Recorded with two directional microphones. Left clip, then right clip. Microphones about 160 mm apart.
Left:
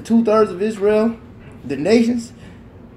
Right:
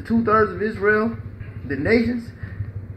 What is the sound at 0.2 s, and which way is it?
Speech, 40° left (ahead or behind).